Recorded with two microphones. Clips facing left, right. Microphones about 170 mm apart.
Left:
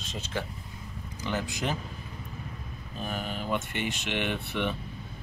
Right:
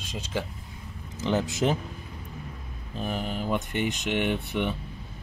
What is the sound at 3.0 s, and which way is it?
Speech, 15° right (ahead or behind).